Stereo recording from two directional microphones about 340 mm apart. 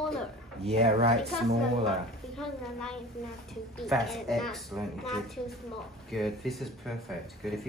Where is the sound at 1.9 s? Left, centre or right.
Centre.